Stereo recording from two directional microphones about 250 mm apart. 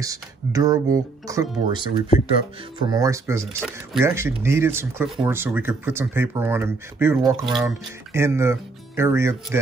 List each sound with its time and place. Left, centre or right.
0.0 s speech: centre
2.0 s speech: left
2.8 s speech: centre